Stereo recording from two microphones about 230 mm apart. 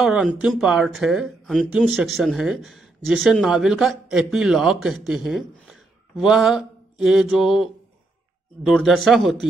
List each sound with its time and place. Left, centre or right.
0.0 s speech: centre